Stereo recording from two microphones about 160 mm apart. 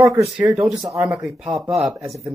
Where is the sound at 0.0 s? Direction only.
20° right (ahead or behind).